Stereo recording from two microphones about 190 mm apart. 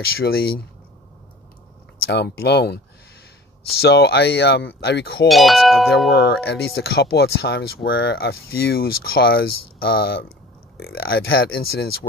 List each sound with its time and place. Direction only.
0.2 s speech: 55° left (ahead or behind)
2.0 s speech: 60° left (ahead or behind)
3.8 s speech: 60° left (ahead or behind)
5.3 s wind chime: centre (ahead or behind)
6.2 s speech: 60° left (ahead or behind)